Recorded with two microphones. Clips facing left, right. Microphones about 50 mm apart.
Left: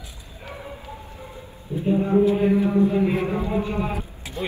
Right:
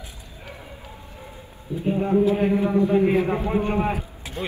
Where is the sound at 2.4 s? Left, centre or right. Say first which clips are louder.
Left 1 dB; right.